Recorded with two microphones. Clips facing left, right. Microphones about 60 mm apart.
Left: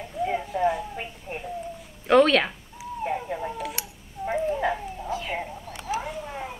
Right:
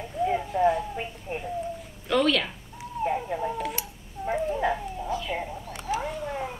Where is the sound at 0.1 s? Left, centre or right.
Centre.